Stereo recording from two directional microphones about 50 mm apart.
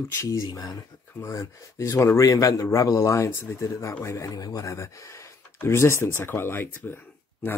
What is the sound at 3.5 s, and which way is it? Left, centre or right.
Speech, left.